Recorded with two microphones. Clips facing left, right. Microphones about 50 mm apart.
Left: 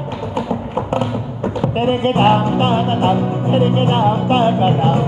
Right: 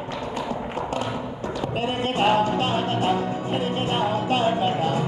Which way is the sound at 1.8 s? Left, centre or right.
Left.